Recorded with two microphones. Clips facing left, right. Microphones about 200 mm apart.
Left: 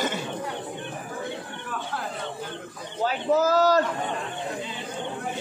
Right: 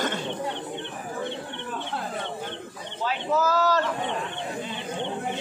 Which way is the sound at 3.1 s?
40° left (ahead or behind).